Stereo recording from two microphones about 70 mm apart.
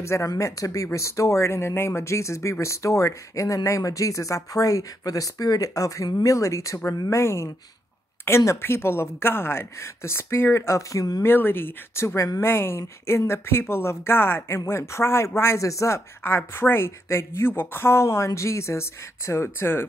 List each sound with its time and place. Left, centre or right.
0.0 s speech: left
11.2 s speech: left
16.2 s speech: left